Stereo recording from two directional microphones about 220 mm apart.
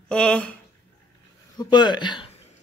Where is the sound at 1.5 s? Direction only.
20° left (ahead or behind).